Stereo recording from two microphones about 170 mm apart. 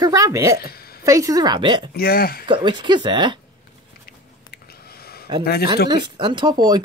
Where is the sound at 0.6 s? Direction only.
65° left (ahead or behind).